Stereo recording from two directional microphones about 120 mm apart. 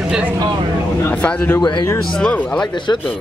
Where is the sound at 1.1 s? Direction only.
10° left (ahead or behind).